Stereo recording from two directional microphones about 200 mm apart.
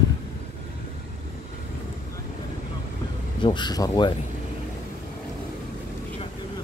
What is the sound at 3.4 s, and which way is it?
Speech, 20° left (ahead or behind).